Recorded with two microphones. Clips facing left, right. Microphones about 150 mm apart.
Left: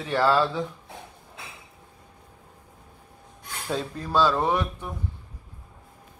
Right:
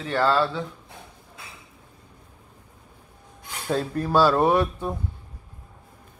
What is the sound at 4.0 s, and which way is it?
Speech, 10° right (ahead or behind).